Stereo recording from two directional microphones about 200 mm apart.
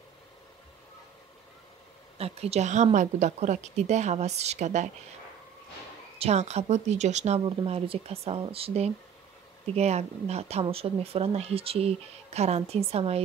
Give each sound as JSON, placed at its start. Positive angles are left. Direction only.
{"t": 2.1, "sound": "speech", "side_deg": -30}
{"t": 6.1, "sound": "speech", "side_deg": -30}